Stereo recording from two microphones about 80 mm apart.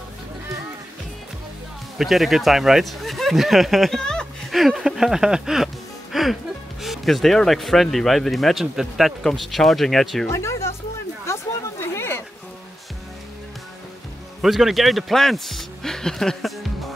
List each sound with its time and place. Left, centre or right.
2.0 s speech: centre
6.1 s music: centre
6.8 s speech: centre
10.2 s speech: left
11.3 s a sound: left
14.4 s speech: centre